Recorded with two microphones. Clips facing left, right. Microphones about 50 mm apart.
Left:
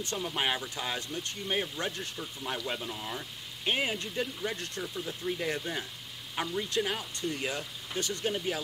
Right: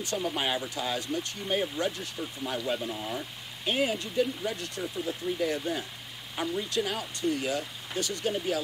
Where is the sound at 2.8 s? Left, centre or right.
Centre.